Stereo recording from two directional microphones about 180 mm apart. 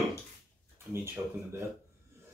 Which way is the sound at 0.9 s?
15° right (ahead or behind).